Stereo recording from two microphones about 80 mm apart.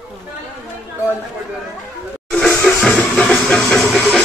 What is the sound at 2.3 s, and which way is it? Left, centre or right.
Music, centre.